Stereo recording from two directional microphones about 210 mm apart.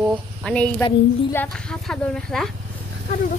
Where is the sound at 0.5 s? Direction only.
5° left (ahead or behind).